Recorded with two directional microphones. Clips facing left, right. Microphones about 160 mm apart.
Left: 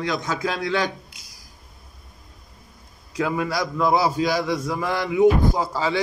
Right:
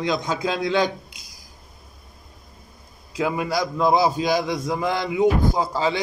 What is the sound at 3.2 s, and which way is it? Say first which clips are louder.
A man's voice: right 1 dB; 15° right (ahead or behind).